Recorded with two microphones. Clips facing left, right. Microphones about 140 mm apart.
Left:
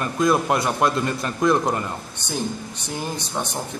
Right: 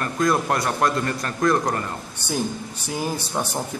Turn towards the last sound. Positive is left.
turn(degrees=-10)  # may be behind; listen again after turning